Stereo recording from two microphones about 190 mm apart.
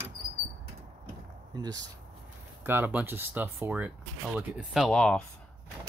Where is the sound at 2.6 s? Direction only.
10° right (ahead or behind).